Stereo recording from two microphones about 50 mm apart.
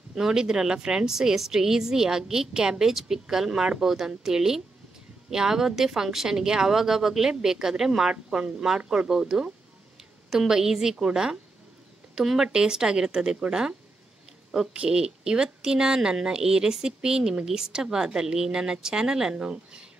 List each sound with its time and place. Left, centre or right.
0.1 s a woman's voice: centre